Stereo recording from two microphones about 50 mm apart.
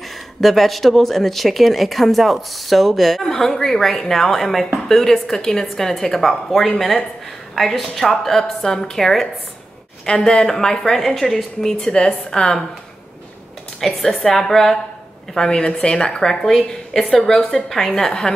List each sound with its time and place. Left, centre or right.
0.4 s a woman's voice: centre
11.8 s speech: centre
13.7 s speech: centre
15.3 s speech: centre